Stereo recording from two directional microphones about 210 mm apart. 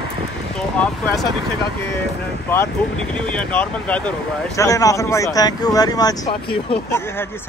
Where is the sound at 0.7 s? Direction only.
5° left (ahead or behind).